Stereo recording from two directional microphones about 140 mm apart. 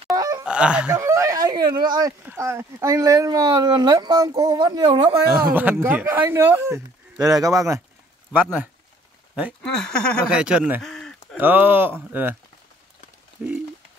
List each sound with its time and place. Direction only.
0.1 s groan: 25° right (ahead or behind)
0.5 s speech: 5° right (ahead or behind)
0.9 s speech: 20° right (ahead or behind)
2.2 s speech: 20° right (ahead or behind)
5.4 s speech: 15° right (ahead or behind)
8.3 s speech: 10° right (ahead or behind)
9.6 s speech: 5° left (ahead or behind)
10.2 s speech: 5° right (ahead or behind)
11.3 s speech: 15° right (ahead or behind)
13.4 s speech: 10° right (ahead or behind)